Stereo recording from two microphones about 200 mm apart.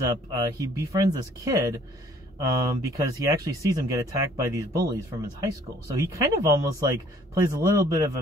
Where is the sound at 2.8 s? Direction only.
15° right (ahead or behind).